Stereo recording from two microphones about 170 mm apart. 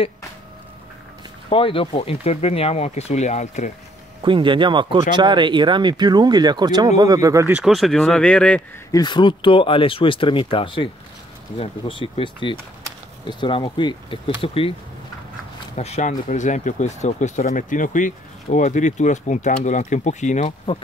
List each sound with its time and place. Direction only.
1.5 s speech: 30° left (ahead or behind)
4.2 s speech: 30° right (ahead or behind)
7.5 s speech: centre (ahead or behind)
8.9 s speech: 25° left (ahead or behind)
15.7 s speech: 40° left (ahead or behind)